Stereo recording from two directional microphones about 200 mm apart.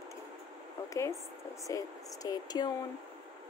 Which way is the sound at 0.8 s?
15° left (ahead or behind).